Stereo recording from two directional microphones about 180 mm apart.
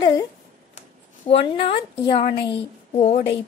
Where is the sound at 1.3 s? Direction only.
30° left (ahead or behind).